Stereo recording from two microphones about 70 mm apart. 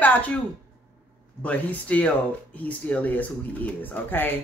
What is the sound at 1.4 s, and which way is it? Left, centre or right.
Speech, centre.